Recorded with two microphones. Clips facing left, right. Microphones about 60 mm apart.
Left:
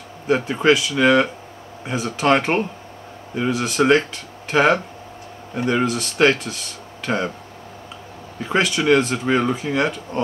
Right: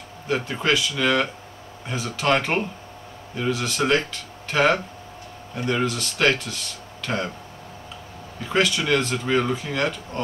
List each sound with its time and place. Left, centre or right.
0.3 s speech: left
7.0 s a sound: centre
8.5 s speech: centre